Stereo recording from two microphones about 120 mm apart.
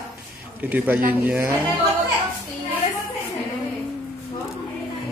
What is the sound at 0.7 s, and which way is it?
Speech, 15° right (ahead or behind).